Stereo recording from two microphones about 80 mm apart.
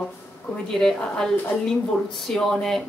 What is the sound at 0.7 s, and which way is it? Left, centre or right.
A woman's voice, centre.